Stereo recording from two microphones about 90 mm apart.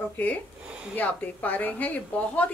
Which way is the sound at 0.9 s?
15° left (ahead or behind).